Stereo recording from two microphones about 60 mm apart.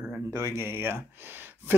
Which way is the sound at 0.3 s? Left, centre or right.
Right.